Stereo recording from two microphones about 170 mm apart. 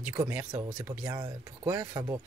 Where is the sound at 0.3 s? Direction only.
15° right (ahead or behind).